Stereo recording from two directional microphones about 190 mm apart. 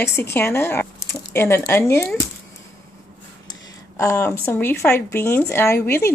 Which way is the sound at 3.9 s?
15° left (ahead or behind).